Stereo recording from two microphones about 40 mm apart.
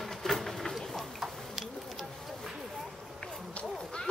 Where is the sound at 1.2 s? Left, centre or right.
Centre.